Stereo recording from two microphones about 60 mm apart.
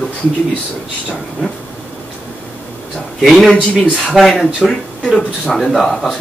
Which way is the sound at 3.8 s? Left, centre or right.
Centre.